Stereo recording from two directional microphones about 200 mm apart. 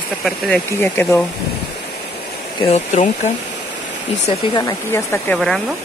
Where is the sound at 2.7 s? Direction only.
35° left (ahead or behind).